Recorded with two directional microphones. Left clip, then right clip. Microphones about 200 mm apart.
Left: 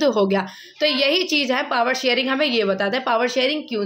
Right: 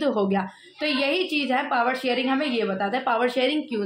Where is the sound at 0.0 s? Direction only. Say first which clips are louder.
Left 5 dB; 40° left (ahead or behind).